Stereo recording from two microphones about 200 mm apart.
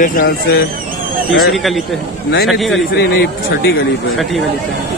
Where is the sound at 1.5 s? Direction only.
Centre (ahead or behind).